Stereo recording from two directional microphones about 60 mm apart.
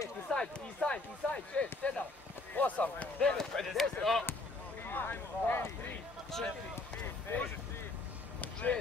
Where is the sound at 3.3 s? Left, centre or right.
Centre.